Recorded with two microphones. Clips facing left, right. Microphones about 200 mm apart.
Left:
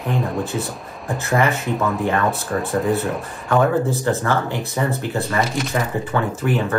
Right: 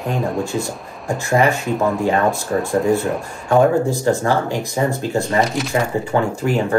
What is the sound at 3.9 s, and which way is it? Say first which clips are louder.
Speech: right 3 dB; 15° right (ahead or behind).